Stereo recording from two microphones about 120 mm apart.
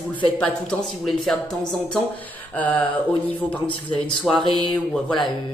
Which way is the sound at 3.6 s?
45° left (ahead or behind).